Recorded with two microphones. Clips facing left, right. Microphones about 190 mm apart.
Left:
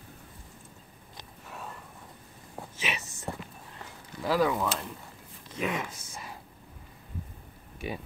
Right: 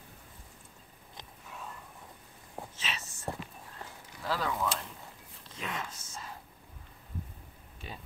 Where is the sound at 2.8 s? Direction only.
15° left (ahead or behind).